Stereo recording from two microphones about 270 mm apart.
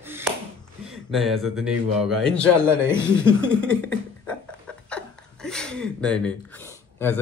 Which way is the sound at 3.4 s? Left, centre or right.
Centre.